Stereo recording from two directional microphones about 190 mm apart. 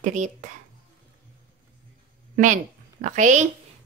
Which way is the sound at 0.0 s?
40° right (ahead or behind).